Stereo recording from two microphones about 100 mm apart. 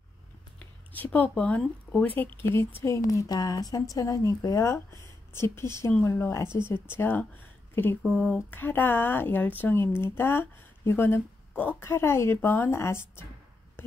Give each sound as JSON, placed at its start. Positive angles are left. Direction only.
{"t": 0.6, "sound": "speech", "side_deg": 15}
{"t": 2.5, "sound": "a woman's voice", "side_deg": 20}
{"t": 13.8, "sound": "a sound", "side_deg": 20}